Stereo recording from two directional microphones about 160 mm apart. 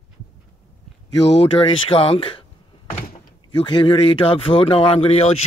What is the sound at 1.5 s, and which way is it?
Speech, 35° left (ahead or behind).